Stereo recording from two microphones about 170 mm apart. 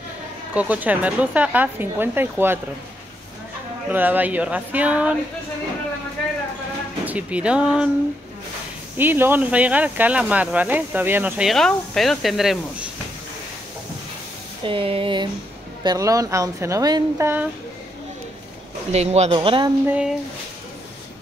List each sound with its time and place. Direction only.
0.6 s speech: 10° right (ahead or behind)
3.9 s speech: 10° right (ahead or behind)
7.1 s speech: 10° right (ahead or behind)
8.9 s speech: 10° right (ahead or behind)
14.6 s a woman's voice: 30° right (ahead or behind)
18.9 s speech: 40° right (ahead or behind)
19.9 s speech: 5° right (ahead or behind)